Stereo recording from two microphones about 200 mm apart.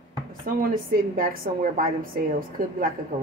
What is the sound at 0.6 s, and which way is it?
Speech, 45° right (ahead or behind).